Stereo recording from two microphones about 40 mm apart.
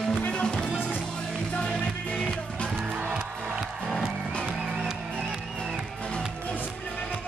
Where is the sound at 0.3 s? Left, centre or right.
Left.